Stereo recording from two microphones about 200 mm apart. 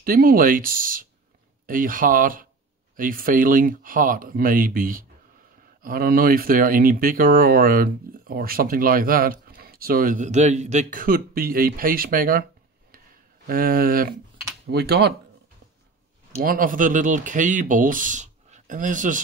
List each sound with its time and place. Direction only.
0.0 s speech: 45° right (ahead or behind)
13.5 s speech: 45° right (ahead or behind)
16.4 s speech: 45° right (ahead or behind)